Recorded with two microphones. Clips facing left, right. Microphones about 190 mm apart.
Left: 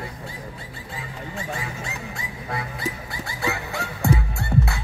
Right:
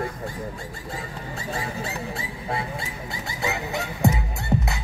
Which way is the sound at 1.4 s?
35° right (ahead or behind).